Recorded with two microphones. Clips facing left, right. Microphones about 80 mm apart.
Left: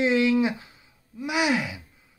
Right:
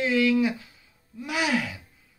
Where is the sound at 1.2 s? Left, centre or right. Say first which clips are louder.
Left 2 dB; centre.